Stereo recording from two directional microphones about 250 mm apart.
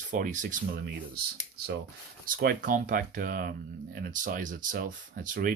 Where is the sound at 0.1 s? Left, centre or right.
Right.